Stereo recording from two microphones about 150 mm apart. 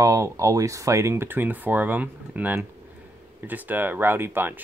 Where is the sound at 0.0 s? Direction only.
20° right (ahead or behind).